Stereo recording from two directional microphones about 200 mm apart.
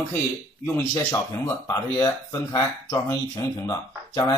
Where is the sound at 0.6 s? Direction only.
15° left (ahead or behind).